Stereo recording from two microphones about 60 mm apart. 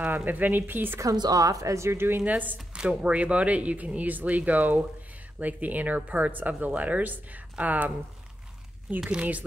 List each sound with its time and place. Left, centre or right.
0.2 s speech: right
0.9 s speech: right
2.2 s speech: right
2.7 s speech: centre